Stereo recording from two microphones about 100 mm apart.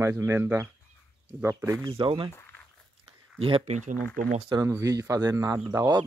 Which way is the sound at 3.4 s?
80° right.